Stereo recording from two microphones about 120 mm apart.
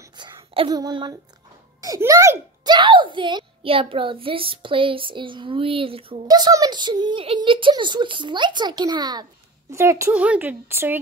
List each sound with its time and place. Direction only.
0.2 s a child's voice: 35° right (ahead or behind)
2.7 s a child's voice: 40° right (ahead or behind)
6.2 s speech: 35° right (ahead or behind)
10.1 s speech: 10° right (ahead or behind)